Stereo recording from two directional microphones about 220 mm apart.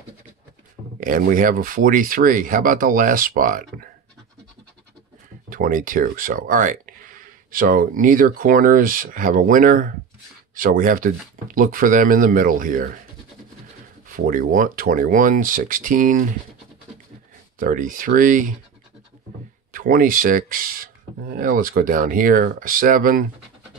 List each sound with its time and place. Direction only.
0.9 s speech: 40° right (ahead or behind)
5.5 s speech: 40° right (ahead or behind)
14.0 s speech: 40° right (ahead or behind)
17.6 s speech: 40° right (ahead or behind)
19.7 s speech: 40° right (ahead or behind)